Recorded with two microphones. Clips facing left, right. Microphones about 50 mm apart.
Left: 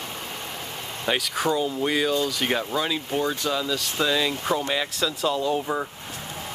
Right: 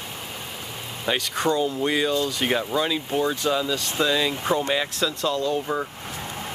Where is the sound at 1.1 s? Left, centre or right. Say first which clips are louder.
Right 1 dB; centre.